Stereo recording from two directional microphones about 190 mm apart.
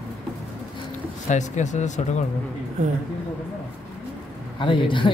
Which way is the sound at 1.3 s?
40° left (ahead or behind).